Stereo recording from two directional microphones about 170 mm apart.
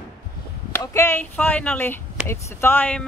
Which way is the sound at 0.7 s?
15° left (ahead or behind).